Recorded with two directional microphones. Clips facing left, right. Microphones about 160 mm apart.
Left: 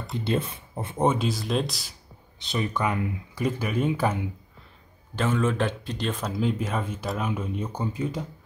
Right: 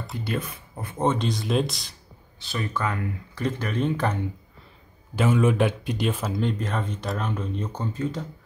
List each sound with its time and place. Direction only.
0.2 s speech: 25° left (ahead or behind)
1.0 s speech: 5° left (ahead or behind)
2.3 s speech: 20° left (ahead or behind)
5.1 s speech: 10° right (ahead or behind); by 8.3 s 10° left (ahead or behind)